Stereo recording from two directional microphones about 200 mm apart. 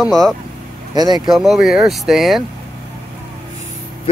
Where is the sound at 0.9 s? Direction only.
20° right (ahead or behind).